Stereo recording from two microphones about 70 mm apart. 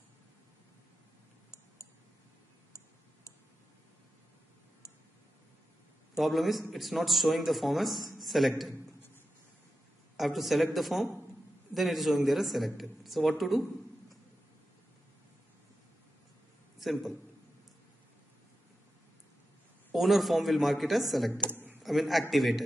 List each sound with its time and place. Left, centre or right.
4.8 s a sound: left
6.1 s a man's voice: centre
10.1 s a man's voice: centre
16.7 s a man's voice: centre
19.9 s a man's voice: centre
21.5 s a sound: right
21.8 s a man's voice: centre